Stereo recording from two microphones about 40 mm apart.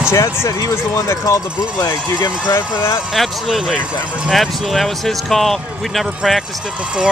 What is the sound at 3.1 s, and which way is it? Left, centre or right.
Speech, centre.